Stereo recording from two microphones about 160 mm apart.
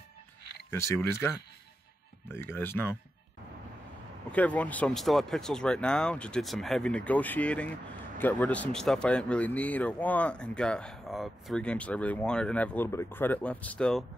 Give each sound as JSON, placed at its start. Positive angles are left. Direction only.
{"t": 0.7, "sound": "speech", "side_deg": 15}
{"t": 4.3, "sound": "speech", "side_deg": 10}